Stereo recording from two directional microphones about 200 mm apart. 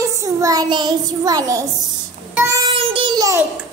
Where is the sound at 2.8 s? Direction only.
25° right (ahead or behind).